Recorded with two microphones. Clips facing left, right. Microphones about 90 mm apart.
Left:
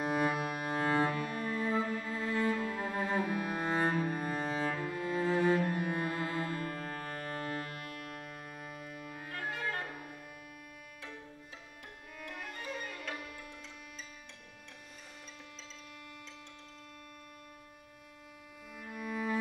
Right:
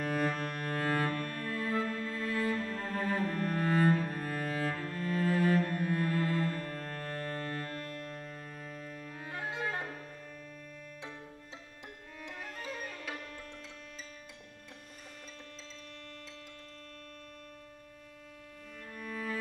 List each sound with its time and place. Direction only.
0.0 s cello: 15° left (ahead or behind)
9.2 s clarinet: 20° right (ahead or behind)
12.4 s music: centre (ahead or behind)
18.9 s cello: 15° left (ahead or behind)